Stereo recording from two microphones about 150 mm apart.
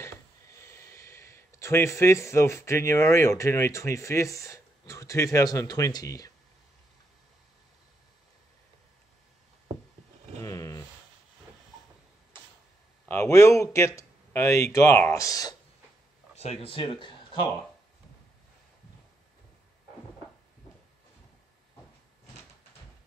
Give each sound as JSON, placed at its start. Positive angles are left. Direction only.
{"t": 0.0, "sound": "speech", "side_deg": 20}
{"t": 10.4, "sound": "a sound", "side_deg": 20}
{"t": 13.1, "sound": "speech", "side_deg": 20}
{"t": 16.3, "sound": "speech", "side_deg": 40}